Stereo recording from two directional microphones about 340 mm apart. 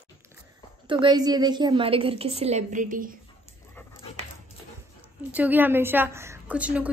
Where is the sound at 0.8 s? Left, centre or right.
Centre.